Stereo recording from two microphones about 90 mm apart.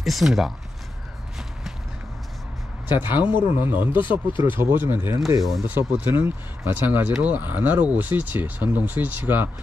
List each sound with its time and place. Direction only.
0.0 s speech: centre (ahead or behind)
3.0 s speech: 20° right (ahead or behind)
4.0 s speech: 65° left (ahead or behind)
4.4 s speech: 25° right (ahead or behind)